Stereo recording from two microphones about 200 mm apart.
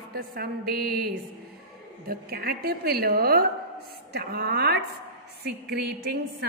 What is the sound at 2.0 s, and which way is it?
A woman's voice, 50° right (ahead or behind).